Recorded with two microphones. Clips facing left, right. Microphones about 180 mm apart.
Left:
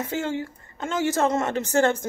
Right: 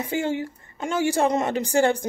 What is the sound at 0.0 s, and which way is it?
A woman's voice, 15° right (ahead or behind).